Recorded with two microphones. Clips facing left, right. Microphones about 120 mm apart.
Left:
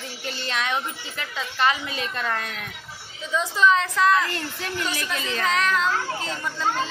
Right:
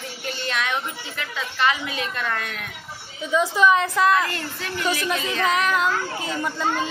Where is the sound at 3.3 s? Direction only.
10° right (ahead or behind).